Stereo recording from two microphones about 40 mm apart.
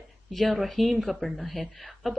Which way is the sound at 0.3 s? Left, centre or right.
Centre.